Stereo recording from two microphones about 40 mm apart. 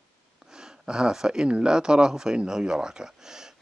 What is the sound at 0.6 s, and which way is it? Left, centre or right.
Speech, centre.